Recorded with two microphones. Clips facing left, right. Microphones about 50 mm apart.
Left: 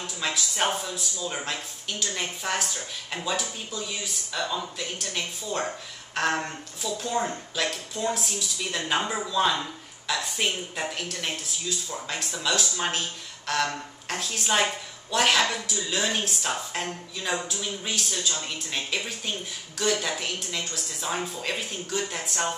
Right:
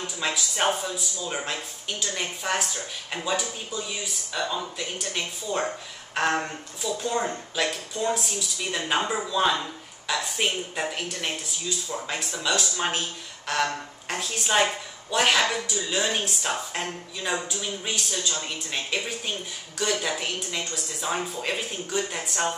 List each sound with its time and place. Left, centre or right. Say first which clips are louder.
0.0 s speech: right 1 dB; centre